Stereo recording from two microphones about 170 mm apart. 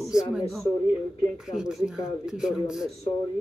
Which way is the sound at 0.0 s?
5° right (ahead or behind).